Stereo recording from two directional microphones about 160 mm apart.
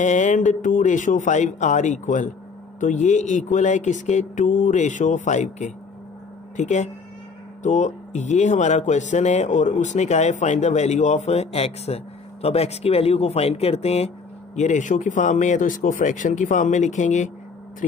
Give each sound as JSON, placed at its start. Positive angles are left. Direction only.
{"t": 0.0, "sound": "speech", "side_deg": 50}